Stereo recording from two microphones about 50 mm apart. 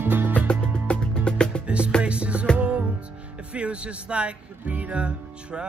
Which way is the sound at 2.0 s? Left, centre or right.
Right.